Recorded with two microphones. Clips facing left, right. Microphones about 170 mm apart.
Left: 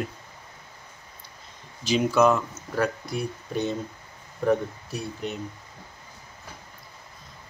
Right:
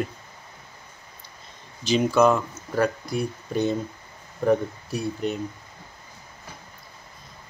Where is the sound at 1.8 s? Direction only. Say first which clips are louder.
Right 1 dB; 5° left (ahead or behind).